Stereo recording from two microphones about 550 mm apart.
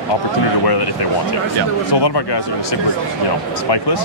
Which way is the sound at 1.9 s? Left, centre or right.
Left.